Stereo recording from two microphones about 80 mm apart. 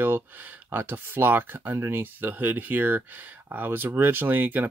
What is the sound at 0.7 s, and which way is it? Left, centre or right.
Speech, right.